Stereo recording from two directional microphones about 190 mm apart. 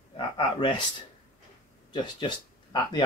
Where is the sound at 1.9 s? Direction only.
25° left (ahead or behind).